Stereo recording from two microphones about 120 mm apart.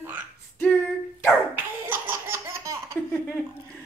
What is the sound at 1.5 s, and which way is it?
Laughter, 15° right (ahead or behind).